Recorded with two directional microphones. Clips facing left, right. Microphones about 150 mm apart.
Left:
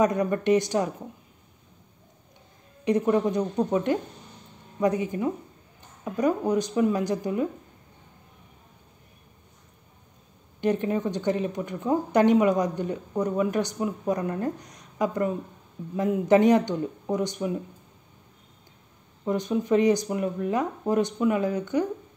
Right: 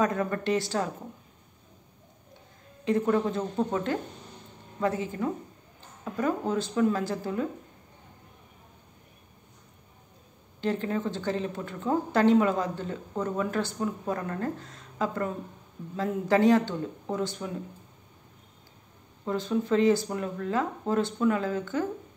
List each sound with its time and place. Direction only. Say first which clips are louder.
0.0 s a woman's voice: left 4 dB; 20° left (ahead or behind)
2.8 s a woman's voice: left 3 dB; 20° left (ahead or behind)
10.6 s a woman's voice: left 4 dB; 20° left (ahead or behind)
19.2 s a woman's voice: left 3 dB; 15° left (ahead or behind)